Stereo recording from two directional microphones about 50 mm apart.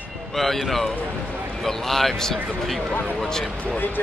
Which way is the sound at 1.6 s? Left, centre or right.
Centre.